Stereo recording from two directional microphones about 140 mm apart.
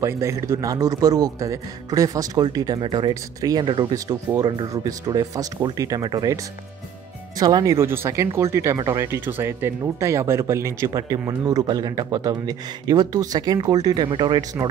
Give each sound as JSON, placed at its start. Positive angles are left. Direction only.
{"t": 0.0, "sound": "speech", "side_deg": -20}